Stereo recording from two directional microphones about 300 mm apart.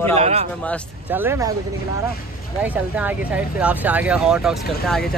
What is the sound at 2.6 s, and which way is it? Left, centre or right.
A man's voice, centre.